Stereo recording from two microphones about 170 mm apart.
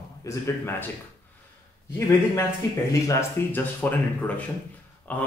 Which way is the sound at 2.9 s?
15° left (ahead or behind).